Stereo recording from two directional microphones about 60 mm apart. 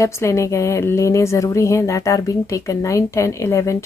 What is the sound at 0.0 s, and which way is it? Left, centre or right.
Speech, left.